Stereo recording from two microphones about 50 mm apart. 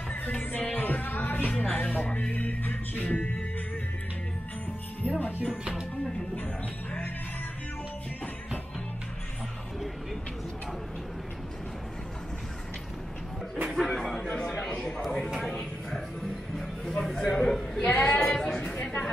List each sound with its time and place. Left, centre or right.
0.1 s music: left
1.5 s music: left
5.0 s speech: left
13.7 s speech: centre
14.2 s a man's voice: centre
15.0 s speech: centre
15.9 s music: centre
17.4 s a man's voice: centre
17.9 s speech: left
18.2 s a sound: centre